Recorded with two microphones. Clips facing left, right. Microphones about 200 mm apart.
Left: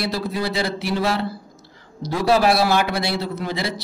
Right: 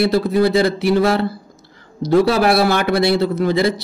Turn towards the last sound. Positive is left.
turn(degrees=-55)  # may be behind; listen again after turning